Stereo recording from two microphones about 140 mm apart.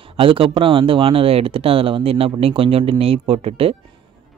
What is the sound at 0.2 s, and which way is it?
Speech, 40° right (ahead or behind).